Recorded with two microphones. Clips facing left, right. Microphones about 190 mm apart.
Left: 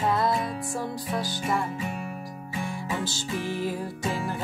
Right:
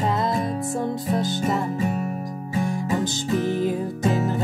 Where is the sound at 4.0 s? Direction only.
45° right (ahead or behind).